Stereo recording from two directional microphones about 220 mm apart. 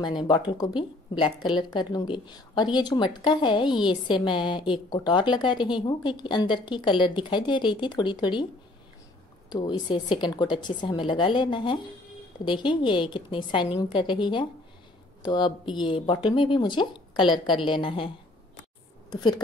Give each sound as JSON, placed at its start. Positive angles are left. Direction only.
{"t": 0.0, "sound": "a woman's voice", "side_deg": 20}
{"t": 9.5, "sound": "a woman's voice", "side_deg": 20}